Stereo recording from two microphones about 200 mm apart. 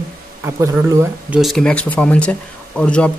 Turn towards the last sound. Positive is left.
turn(degrees=5)  # may be behind; listen again after turning